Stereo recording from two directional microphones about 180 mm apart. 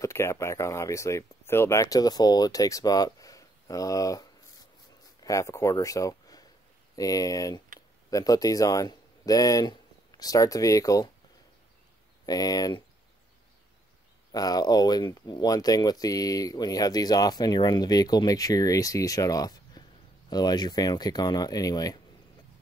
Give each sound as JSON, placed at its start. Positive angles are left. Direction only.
{"t": 0.0, "sound": "speech", "side_deg": 15}
{"t": 12.3, "sound": "speech", "side_deg": 20}
{"t": 14.3, "sound": "speech", "side_deg": 20}